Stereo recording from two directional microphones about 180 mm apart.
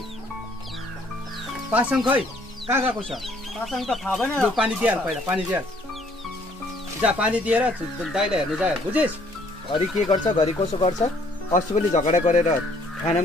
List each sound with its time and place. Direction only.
1.7 s speech: 5° right (ahead or behind)
7.0 s speech: 10° right (ahead or behind)
9.7 s speech: 25° left (ahead or behind)